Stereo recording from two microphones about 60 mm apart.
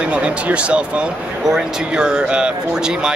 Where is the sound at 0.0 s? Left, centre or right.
Centre.